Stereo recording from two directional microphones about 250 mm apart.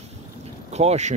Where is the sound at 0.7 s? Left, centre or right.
Right.